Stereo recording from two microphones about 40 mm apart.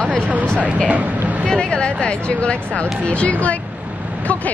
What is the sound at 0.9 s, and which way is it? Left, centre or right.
Speech, right.